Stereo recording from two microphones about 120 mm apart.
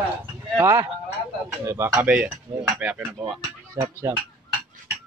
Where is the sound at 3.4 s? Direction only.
25° right (ahead or behind).